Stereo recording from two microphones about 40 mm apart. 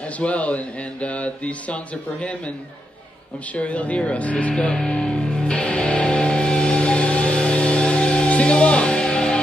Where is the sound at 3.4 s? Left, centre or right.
Left.